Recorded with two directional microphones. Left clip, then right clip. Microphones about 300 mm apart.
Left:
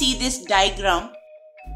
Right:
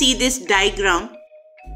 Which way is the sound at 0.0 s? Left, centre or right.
Centre.